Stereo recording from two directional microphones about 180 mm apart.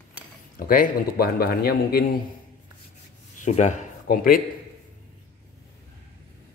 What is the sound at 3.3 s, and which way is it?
Speech, 40° left (ahead or behind).